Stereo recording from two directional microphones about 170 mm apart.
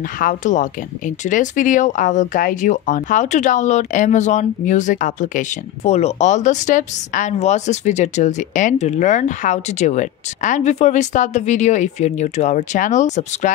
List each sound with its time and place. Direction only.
0.2 s speech: 50° left (ahead or behind)